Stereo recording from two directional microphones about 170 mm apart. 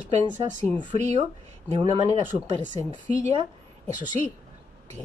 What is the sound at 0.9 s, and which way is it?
Speech, 45° right (ahead or behind).